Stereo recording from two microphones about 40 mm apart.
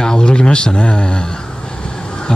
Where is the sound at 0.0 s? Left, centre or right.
Centre.